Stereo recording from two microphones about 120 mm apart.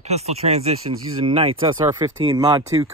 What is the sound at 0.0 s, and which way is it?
Speech, 65° right (ahead or behind).